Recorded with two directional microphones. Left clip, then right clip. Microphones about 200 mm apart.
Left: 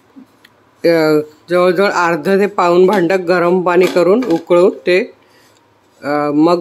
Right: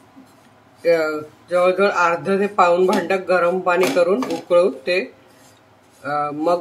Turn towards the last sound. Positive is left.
turn(degrees=50)  # may be behind; listen again after turning